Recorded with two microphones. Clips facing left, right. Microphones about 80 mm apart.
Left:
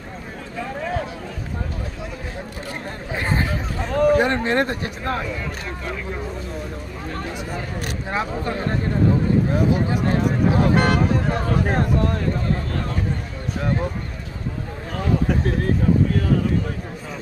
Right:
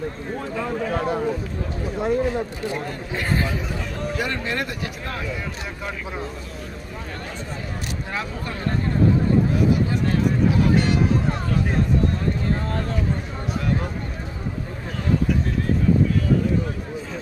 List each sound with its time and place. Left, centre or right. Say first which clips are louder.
0.9 s a sound: right 4 dB; right
3.2 s speech: left 1 dB; left
3.9 s speech: left 13 dB; left
4.3 s speech: left 6 dB; left
8.1 s speech: left 7 dB; left
10.0 s speech: even; left
10.7 s speech: left 1 dB; left
15.2 s speech: left 2 dB; left